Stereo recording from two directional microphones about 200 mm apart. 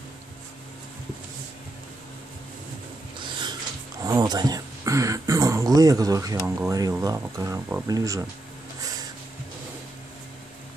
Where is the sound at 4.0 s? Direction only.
20° right (ahead or behind).